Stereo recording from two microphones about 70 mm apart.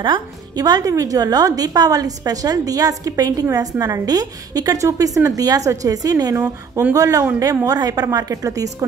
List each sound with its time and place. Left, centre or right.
0.6 s a woman's voice: right